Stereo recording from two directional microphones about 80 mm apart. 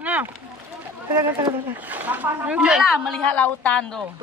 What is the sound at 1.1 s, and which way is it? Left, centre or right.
Speech, right.